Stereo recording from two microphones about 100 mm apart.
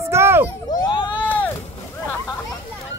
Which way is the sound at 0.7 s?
55° left (ahead or behind).